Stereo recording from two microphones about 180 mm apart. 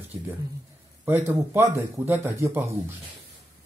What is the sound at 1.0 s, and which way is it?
Speech, 10° right (ahead or behind).